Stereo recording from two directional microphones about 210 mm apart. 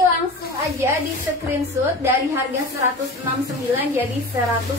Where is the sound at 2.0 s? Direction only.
15° right (ahead or behind).